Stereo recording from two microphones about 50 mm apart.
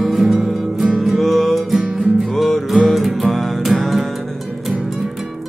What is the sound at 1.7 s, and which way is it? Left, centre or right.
Music, centre.